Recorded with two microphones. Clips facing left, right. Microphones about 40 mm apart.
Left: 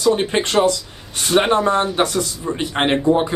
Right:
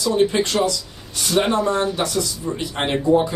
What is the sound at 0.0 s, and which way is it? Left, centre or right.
Speech, left.